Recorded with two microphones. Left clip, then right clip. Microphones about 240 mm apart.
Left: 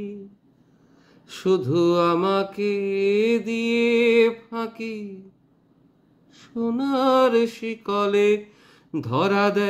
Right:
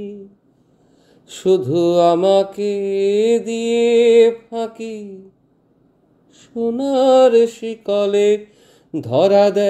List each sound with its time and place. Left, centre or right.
1.6 s mantra: centre
6.6 s mantra: centre
8.5 s a sound: centre
9.1 s mantra: centre